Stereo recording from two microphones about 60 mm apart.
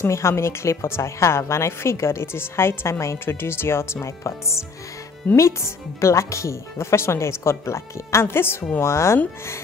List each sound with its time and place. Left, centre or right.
0.0 s a woman's voice: left